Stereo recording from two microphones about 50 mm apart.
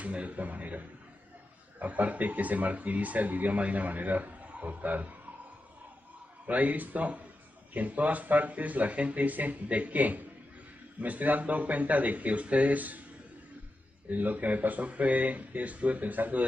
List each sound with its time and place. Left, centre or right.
0.0 s speech: right
6.4 s speech: right
14.0 s speech: right